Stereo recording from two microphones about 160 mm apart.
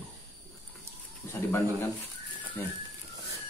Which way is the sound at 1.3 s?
15° left (ahead or behind).